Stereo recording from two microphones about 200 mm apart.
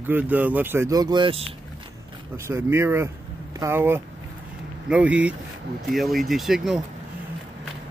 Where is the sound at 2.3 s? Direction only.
10° right (ahead or behind).